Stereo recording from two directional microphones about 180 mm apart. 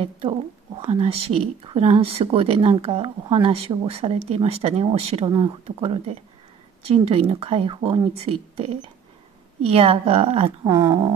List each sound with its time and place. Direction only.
0.8 s speech: 30° right (ahead or behind)
10.7 s speech: 20° right (ahead or behind)